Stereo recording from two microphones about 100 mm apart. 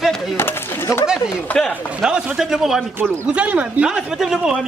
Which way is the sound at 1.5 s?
10° left (ahead or behind).